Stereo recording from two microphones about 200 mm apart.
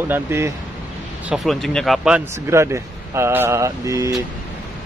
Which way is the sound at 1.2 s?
Centre (ahead or behind).